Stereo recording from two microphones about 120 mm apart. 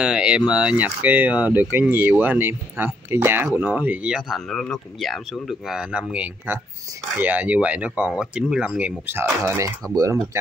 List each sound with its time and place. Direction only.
0.0 s speech: 5° right (ahead or behind); by 10.4 s 25° right (ahead or behind)